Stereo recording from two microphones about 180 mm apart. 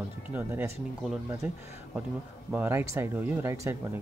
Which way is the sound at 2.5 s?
10° right (ahead or behind).